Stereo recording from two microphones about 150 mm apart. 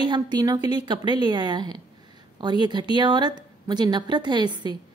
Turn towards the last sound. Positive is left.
turn(degrees=-30)  # may be behind; listen again after turning